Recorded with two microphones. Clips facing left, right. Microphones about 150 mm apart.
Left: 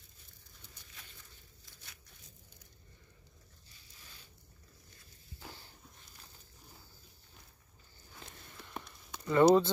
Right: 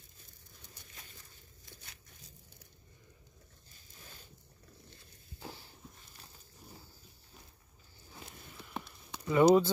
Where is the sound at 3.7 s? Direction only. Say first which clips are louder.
Right 5 dB; 45° right (ahead or behind).